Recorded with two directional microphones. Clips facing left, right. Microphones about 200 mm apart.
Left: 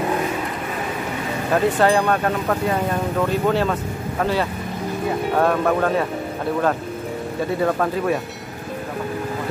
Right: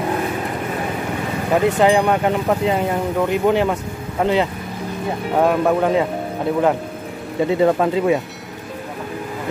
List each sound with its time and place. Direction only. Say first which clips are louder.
1.5 s speech: right 2 dB; 15° right (ahead or behind)
7.6 s speech: right 4 dB; 20° right (ahead or behind)